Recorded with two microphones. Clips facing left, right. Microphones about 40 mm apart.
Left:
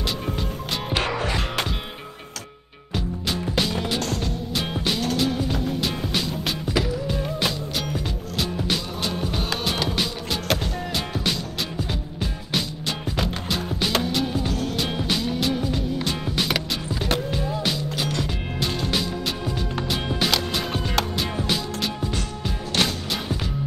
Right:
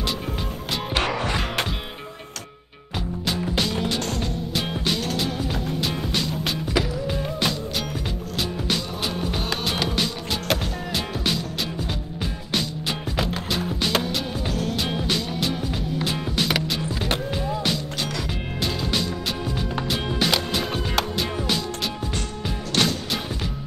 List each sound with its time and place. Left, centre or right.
3.3 s music: centre
12.5 s music: centre
17.6 s music: centre